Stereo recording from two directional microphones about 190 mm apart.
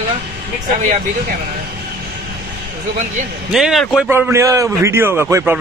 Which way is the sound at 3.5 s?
Centre (ahead or behind).